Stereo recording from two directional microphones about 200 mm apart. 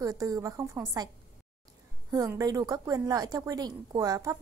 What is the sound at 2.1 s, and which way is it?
A woman's voice, 15° right (ahead or behind).